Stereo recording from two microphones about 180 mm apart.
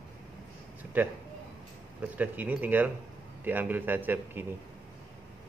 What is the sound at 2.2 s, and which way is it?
A man's voice, 10° right (ahead or behind).